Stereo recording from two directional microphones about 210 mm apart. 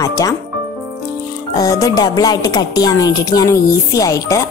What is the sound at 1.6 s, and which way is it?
Speech, 15° left (ahead or behind).